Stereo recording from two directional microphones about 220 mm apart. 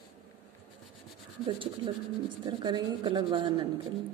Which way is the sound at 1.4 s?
20° right (ahead or behind).